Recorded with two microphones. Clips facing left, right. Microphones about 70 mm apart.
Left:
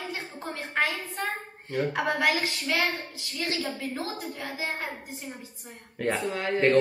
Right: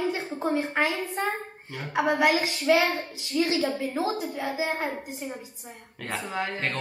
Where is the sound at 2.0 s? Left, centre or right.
Right.